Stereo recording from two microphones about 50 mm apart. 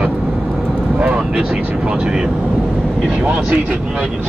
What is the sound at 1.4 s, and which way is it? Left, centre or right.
Speech, right.